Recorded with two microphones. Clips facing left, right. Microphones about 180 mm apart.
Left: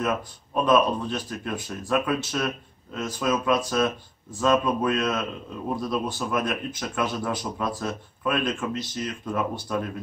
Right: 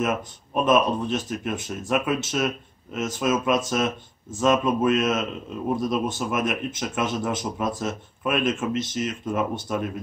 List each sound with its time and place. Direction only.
0.7 s speech: 20° right (ahead or behind)